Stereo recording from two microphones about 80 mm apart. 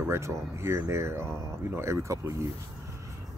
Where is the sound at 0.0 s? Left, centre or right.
Right.